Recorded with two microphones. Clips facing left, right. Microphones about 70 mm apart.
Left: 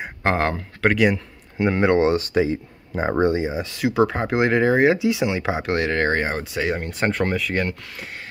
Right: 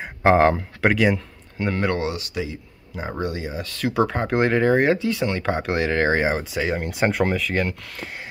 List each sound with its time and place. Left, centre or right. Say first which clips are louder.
0.2 s speech: right 6 dB; centre
0.9 s speech: left 2 dB; centre
1.6 s speech: left 6 dB; left
3.9 s speech: left 1 dB; centre